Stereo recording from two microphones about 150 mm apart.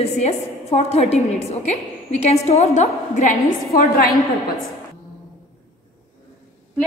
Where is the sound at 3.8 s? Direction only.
75° left (ahead or behind).